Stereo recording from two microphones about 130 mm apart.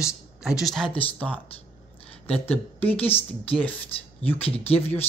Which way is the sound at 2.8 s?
15° left (ahead or behind).